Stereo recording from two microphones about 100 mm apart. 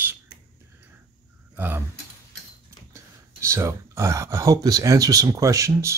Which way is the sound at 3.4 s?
25° right (ahead or behind).